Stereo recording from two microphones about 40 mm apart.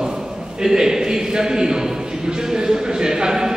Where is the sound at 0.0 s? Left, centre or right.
Centre.